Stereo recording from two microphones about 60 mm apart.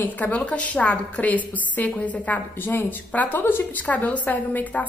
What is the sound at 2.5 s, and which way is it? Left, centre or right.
Speech, left.